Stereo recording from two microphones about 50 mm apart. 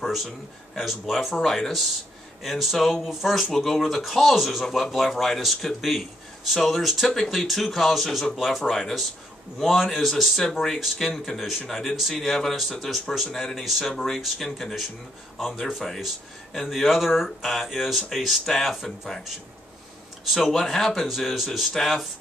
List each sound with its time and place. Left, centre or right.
0.0 s a sound: centre
0.7 s speech: centre
20.3 s speech: centre